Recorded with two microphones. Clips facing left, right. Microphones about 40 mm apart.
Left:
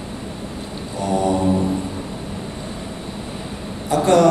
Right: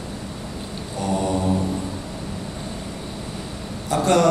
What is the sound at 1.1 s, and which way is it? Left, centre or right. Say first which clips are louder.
Mantra: left 5 dB; left.